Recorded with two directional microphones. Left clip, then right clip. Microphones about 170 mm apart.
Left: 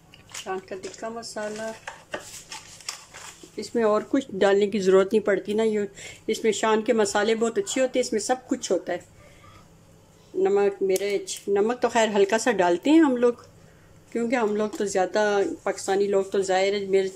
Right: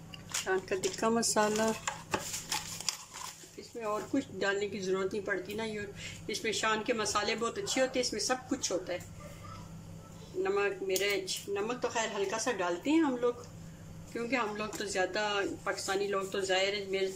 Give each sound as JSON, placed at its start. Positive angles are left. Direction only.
{"t": 0.3, "sound": "speech", "side_deg": 0}
{"t": 1.0, "sound": "speech", "side_deg": -15}
{"t": 3.7, "sound": "speech", "side_deg": 45}
{"t": 10.4, "sound": "speech", "side_deg": 35}
{"t": 14.1, "sound": "speech", "side_deg": 40}